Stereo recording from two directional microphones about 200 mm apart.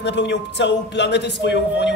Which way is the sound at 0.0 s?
60° left (ahead or behind).